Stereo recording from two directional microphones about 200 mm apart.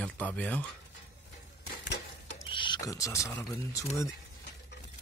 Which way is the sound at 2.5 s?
25° left (ahead or behind).